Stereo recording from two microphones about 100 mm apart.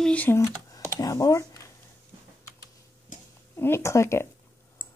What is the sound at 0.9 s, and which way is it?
Speech, 35° left (ahead or behind).